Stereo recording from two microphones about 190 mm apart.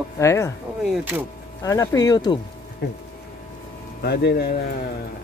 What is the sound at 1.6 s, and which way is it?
Speech, 15° left (ahead or behind).